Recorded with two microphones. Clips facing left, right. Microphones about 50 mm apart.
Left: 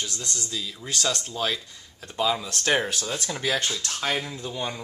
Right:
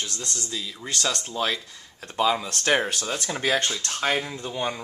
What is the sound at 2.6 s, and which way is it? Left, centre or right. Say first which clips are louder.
Speech: even; centre.